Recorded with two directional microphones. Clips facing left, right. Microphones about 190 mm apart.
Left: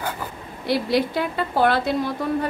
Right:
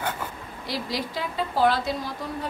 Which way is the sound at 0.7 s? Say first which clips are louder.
Left 10 dB; 60° left (ahead or behind).